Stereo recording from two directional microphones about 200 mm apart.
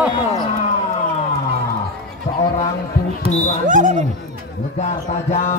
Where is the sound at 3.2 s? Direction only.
40° right (ahead or behind).